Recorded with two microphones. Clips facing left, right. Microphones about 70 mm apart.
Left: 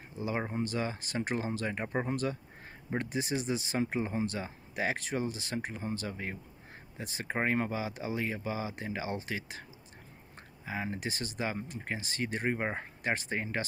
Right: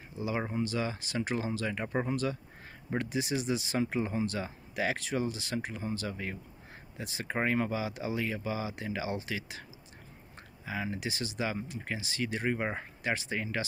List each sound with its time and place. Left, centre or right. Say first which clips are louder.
0.5 s speech: right 1 dB; left
2.0 s speech: right 1 dB; left